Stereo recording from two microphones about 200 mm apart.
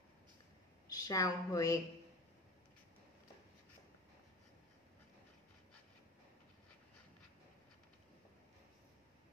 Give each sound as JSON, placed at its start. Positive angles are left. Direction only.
{"t": 0.8, "sound": "a woman's voice", "side_deg": 20}